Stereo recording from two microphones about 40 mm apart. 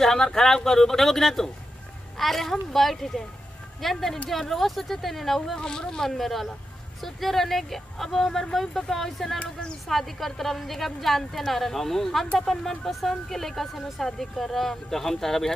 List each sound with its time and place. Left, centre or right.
0.0 s a woman's voice: centre
5.6 s speech: centre
6.1 s speech: centre